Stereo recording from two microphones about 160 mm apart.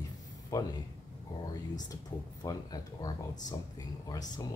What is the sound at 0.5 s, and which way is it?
Speech, 20° left (ahead or behind).